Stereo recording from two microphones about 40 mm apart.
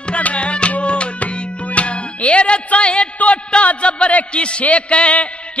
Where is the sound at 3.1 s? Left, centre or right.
Left.